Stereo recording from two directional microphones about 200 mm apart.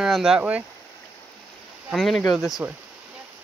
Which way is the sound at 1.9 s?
Centre (ahead or behind).